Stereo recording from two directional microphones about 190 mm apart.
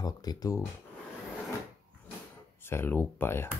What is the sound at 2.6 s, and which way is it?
Speech, 10° left (ahead or behind).